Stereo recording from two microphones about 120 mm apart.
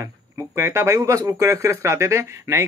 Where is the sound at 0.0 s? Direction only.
25° right (ahead or behind).